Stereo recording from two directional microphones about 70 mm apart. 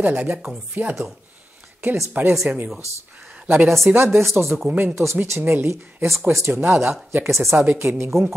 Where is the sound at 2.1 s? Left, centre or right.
Right.